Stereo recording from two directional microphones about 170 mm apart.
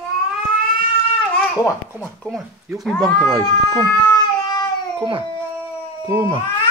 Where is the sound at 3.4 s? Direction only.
20° left (ahead or behind).